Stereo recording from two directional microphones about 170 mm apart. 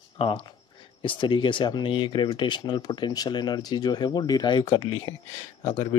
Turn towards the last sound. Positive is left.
turn(degrees=40)  # may be behind; listen again after turning